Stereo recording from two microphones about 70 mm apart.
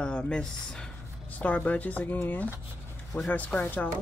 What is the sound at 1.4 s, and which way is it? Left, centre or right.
Speech, left.